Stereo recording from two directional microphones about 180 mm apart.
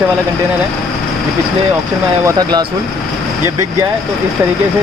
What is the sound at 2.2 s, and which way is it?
Speech, 20° right (ahead or behind).